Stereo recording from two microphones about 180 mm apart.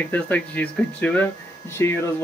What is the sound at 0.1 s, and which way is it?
Speech, 10° left (ahead or behind).